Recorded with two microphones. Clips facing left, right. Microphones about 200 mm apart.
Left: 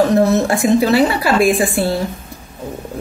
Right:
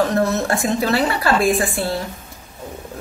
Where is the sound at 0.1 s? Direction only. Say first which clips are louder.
Left 5 dB; 10° left (ahead or behind).